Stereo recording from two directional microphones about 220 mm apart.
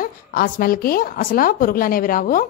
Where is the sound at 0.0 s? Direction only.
40° left (ahead or behind).